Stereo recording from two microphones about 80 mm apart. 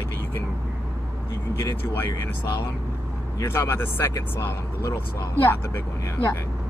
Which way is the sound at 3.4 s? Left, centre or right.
Left.